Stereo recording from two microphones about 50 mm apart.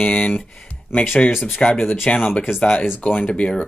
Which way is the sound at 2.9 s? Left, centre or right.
Left.